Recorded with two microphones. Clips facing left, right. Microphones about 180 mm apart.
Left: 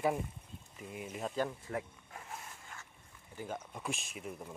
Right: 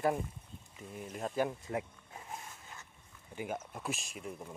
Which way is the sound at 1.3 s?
15° right (ahead or behind).